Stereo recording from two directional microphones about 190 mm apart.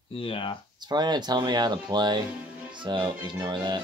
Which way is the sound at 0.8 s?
20° right (ahead or behind).